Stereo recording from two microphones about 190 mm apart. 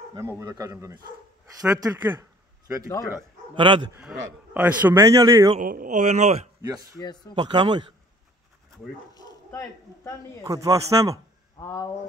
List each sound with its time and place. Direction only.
0.1 s a man's voice: 15° right (ahead or behind)
3.5 s speech: 25° right (ahead or behind)
3.9 s a man's voice: 5° right (ahead or behind); by 5.6 s 20° right (ahead or behind)
5.6 s speech: 45° right (ahead or behind)
6.6 s speech: 20° right (ahead or behind)
7.0 s speech: 20° left (ahead or behind)
7.3 s speech: 25° right (ahead or behind)
9.1 s speech: 15° left (ahead or behind)
10.4 s a man's voice: 20° right (ahead or behind)
11.6 s speech: 15° left (ahead or behind)